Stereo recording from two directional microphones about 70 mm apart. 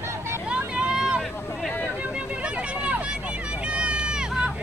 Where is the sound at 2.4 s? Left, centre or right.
Centre.